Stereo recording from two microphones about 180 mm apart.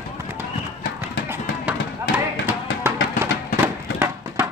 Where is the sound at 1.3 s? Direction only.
10° right (ahead or behind).